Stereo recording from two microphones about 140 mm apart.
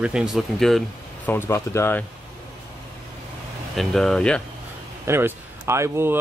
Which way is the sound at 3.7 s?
Centre (ahead or behind).